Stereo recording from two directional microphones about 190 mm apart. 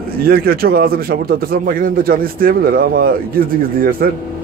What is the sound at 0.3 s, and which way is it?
Speech, 50° right (ahead or behind).